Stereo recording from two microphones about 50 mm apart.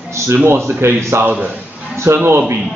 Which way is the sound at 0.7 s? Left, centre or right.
Right.